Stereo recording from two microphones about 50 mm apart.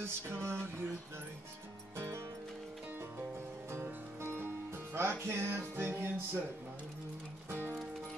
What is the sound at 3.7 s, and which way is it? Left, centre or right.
Music, right.